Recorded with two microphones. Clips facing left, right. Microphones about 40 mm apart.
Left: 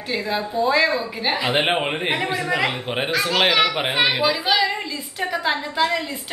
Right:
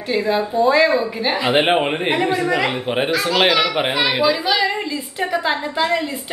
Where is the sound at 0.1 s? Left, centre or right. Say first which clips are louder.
Right 5 dB; centre.